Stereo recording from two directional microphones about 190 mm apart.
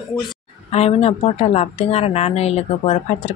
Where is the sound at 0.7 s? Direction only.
35° left (ahead or behind).